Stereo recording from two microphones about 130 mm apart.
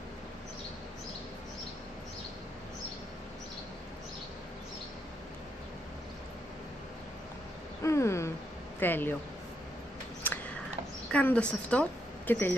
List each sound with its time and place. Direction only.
7.8 s a sound: 20° left (ahead or behind)
8.7 s speech: 15° left (ahead or behind)
11.1 s a woman's voice: 10° left (ahead or behind)